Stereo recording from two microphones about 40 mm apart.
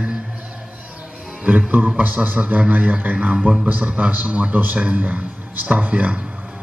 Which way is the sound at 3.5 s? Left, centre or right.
Right.